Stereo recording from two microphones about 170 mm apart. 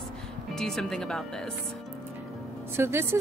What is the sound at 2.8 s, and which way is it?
Speech, 15° right (ahead or behind).